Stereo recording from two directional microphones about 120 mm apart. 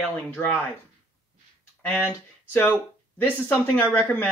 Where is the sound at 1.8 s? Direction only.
15° left (ahead or behind).